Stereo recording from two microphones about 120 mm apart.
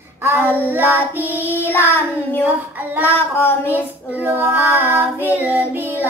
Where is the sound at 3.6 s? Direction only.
15° right (ahead or behind).